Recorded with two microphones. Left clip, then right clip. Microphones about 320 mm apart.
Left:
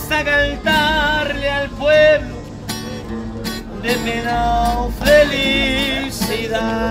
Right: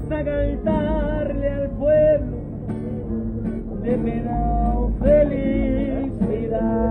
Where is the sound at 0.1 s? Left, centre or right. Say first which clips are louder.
Left 8 dB; centre.